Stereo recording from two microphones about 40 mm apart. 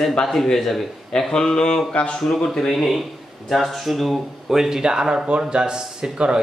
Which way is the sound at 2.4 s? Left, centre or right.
Centre.